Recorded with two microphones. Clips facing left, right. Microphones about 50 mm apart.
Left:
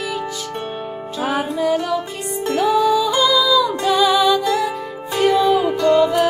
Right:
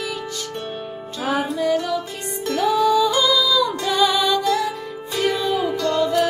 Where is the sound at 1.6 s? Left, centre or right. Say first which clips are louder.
Left 2 dB; centre.